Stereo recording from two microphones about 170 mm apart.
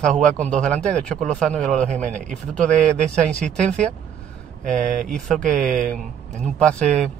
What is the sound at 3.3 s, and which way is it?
Speech, 5° left (ahead or behind).